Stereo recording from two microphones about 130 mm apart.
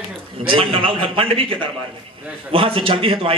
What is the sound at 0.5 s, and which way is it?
A man's voice, 45° right (ahead or behind).